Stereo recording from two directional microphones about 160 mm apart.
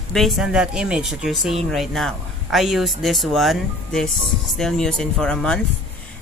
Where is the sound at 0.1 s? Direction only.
Centre (ahead or behind).